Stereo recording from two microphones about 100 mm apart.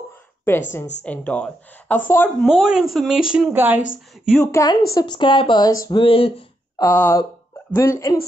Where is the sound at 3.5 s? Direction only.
20° right (ahead or behind).